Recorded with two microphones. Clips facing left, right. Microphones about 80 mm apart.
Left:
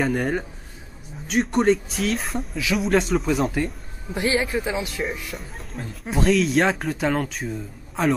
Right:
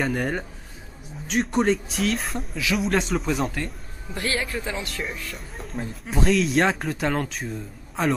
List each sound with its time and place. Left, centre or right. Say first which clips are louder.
0.0 s speech: left 2 dB; centre
4.1 s speech: left 5 dB; centre
5.6 s speech: right 2 dB; centre